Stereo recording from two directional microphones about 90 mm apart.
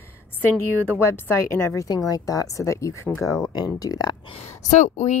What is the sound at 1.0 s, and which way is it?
Speech, 30° left (ahead or behind).